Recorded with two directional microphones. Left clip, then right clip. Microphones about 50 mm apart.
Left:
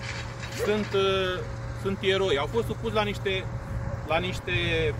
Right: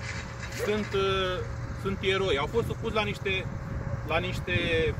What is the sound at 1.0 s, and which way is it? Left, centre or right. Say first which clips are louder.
Speech: left 2 dB; left.